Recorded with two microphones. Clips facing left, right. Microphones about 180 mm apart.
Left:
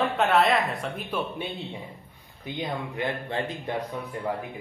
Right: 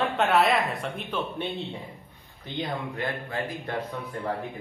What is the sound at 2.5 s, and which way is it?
Speech, 20° left (ahead or behind).